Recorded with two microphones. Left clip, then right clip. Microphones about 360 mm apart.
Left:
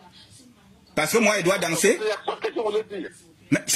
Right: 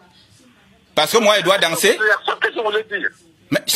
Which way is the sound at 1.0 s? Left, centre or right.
Right.